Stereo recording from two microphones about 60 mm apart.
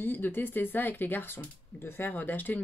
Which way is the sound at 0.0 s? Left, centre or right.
Left.